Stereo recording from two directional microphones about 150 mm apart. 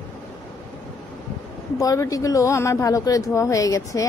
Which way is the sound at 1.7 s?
20° left (ahead or behind).